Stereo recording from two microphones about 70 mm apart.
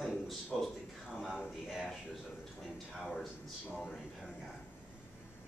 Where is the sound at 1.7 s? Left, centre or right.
Centre.